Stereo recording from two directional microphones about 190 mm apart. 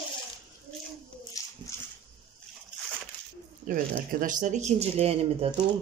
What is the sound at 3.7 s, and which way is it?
Speech, 45° right (ahead or behind).